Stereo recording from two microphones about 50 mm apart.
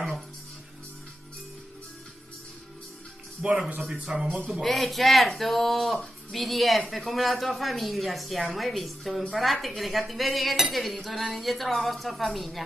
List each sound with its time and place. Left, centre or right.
3.4 s speech: centre
4.6 s a woman's voice: centre